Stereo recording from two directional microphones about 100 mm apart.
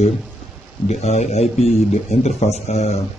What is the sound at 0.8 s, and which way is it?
A man's voice, 90° left.